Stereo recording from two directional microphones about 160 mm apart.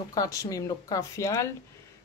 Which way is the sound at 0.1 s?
20° left (ahead or behind).